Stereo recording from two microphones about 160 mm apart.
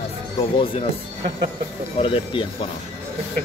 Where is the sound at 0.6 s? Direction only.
30° left (ahead or behind).